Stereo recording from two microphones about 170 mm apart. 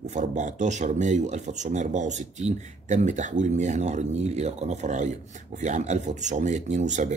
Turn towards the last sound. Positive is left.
turn(degrees=-45)  # may be behind; listen again after turning